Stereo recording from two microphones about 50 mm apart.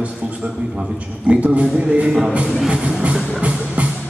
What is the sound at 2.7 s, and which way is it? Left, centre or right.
Speech, centre.